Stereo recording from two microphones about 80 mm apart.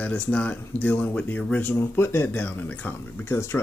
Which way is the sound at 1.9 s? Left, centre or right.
Left.